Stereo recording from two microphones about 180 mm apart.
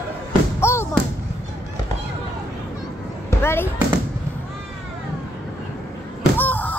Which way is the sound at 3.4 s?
15° left (ahead or behind).